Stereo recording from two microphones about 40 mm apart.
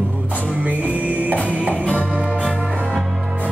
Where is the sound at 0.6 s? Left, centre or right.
Right.